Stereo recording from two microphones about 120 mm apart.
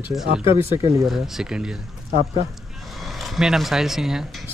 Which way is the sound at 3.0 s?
Centre (ahead or behind).